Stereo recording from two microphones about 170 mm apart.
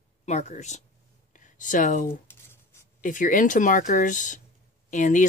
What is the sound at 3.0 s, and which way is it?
Speech, 50° left (ahead or behind).